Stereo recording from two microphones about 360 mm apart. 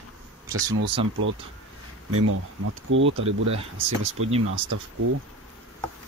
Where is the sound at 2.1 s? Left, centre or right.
Right.